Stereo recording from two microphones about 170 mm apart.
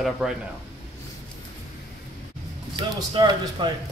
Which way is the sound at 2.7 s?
25° right (ahead or behind).